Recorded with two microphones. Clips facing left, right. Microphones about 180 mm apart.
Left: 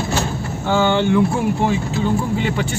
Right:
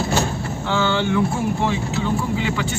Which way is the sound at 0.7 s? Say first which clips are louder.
Left 4 dB; 55° left (ahead or behind).